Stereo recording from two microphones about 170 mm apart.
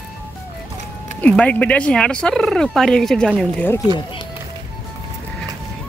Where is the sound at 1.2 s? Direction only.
10° left (ahead or behind).